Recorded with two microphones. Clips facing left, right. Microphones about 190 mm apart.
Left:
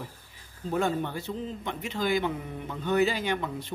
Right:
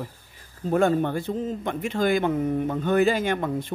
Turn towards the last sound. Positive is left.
turn(degrees=-50)  # may be behind; listen again after turning